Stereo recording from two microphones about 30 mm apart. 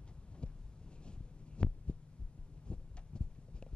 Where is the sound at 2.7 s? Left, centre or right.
Left.